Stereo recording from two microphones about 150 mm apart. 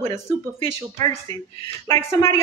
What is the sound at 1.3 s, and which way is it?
A woman's voice, 30° left (ahead or behind).